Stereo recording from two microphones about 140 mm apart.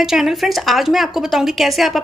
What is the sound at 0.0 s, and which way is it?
Speech, 5° right (ahead or behind).